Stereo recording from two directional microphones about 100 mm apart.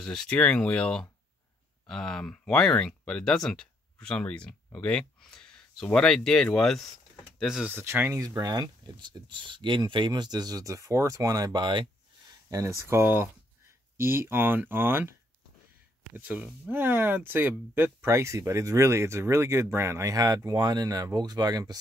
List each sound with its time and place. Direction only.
0.0 s speech: 5° left (ahead or behind)
7.7 s speech: 20° right (ahead or behind)
8.4 s speech: 45° right (ahead or behind)
12.4 s speech: 30° right (ahead or behind)